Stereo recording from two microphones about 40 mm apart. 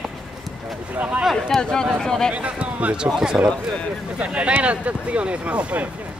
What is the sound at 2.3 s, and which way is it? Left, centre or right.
Speech, right.